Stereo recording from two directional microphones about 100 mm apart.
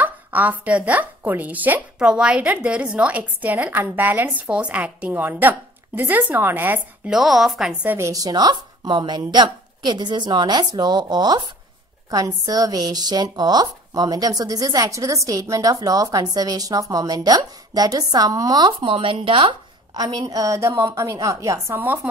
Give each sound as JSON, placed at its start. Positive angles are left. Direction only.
{"t": 0.0, "sound": "a woman's voice", "side_deg": -15}
{"t": 7.1, "sound": "a woman's voice", "side_deg": 0}
{"t": 7.8, "sound": "a woman's voice", "side_deg": -20}
{"t": 8.1, "sound": "a woman's voice", "side_deg": -40}
{"t": 18.9, "sound": "speech", "side_deg": -65}
{"t": 19.9, "sound": "a woman's voice", "side_deg": -40}